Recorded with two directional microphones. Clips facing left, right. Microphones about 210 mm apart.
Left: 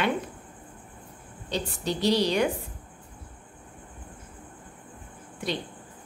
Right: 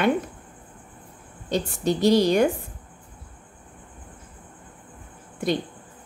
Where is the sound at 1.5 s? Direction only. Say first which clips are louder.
Right 6 dB; 50° right (ahead or behind).